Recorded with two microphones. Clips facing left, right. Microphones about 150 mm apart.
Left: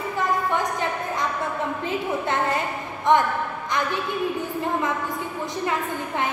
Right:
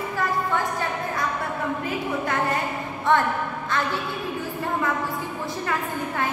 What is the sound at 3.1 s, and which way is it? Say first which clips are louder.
Speech: left 2 dB; 15° left (ahead or behind).